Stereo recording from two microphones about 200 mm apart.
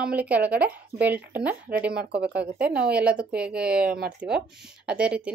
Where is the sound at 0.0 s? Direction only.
5° right (ahead or behind).